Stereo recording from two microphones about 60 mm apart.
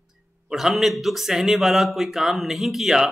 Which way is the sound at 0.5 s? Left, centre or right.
Centre.